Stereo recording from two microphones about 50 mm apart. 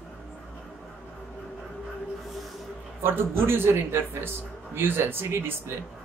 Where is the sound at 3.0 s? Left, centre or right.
Right.